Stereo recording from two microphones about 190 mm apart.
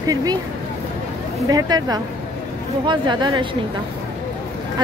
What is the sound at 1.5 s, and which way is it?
Speech, 20° right (ahead or behind).